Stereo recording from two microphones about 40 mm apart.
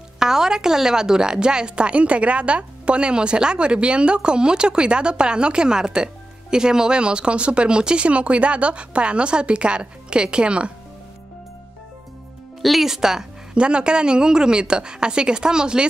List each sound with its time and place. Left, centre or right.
0.2 s a woman's voice: centre
12.8 s a woman's voice: centre
13.6 s a woman's voice: right